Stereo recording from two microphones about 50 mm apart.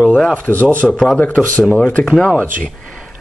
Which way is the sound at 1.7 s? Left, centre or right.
Left.